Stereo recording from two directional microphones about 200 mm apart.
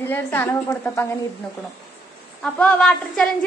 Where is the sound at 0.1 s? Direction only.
10° left (ahead or behind).